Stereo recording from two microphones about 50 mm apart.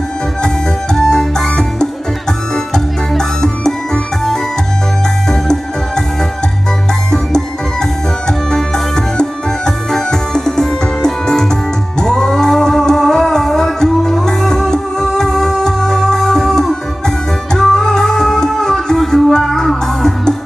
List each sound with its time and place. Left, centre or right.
0.9 s music: centre
8.3 s music: centre